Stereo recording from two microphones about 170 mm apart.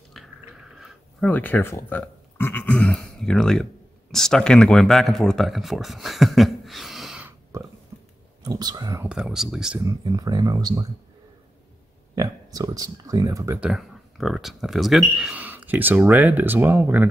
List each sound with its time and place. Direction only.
0.2 s a sound: centre (ahead or behind)
1.3 s speech: 10° left (ahead or behind)
7.5 s a sound: 20° right (ahead or behind)
8.5 s speech: 25° right (ahead or behind)
9.0 s speech: 5° right (ahead or behind)
9.8 s speech: 20° right (ahead or behind)
12.2 s speech: 20° right (ahead or behind)
13.6 s speech: centre (ahead or behind)